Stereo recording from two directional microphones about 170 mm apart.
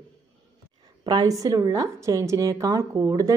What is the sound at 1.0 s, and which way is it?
A woman's voice, 25° right (ahead or behind).